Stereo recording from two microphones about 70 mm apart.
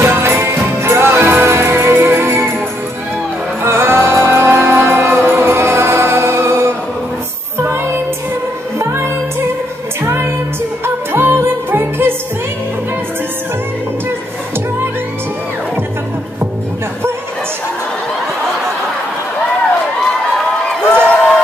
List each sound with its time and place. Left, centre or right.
0.0 s music: right
3.6 s music: right
7.5 s child singing: right
8.7 s music: right
20.9 s a sound: centre